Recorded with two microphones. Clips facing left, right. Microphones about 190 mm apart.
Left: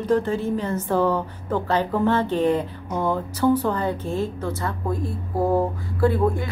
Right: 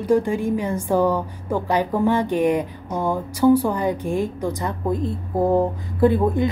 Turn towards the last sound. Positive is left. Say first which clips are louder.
# right 3 dB
turn(degrees=-20)  # may be behind; listen again after turning